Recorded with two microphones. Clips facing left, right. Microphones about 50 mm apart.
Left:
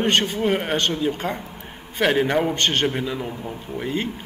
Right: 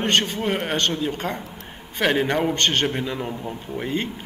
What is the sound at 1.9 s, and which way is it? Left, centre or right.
A man's voice, centre.